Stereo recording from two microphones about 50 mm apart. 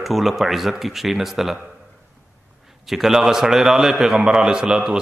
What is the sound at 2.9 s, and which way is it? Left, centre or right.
A man's voice, centre.